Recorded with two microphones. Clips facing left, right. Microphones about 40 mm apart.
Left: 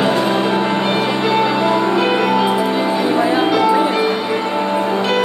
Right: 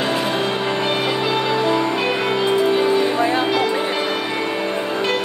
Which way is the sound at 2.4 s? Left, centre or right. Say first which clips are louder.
Left 1 dB; centre.